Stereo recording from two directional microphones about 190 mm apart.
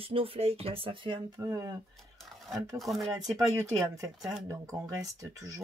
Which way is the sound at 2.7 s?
Centre (ahead or behind).